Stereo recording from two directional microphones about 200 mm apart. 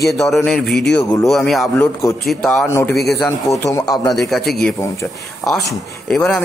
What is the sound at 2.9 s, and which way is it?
Speech, 55° left (ahead or behind).